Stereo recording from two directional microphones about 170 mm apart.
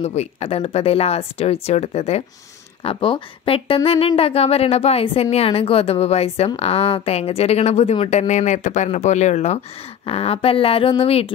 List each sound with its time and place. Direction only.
0.0 s speech: 40° left (ahead or behind)